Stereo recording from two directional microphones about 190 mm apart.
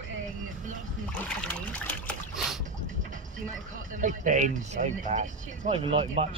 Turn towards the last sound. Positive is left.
turn(degrees=-30)  # may be behind; listen again after turning